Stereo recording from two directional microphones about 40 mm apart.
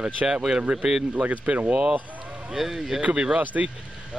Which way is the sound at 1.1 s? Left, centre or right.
Right.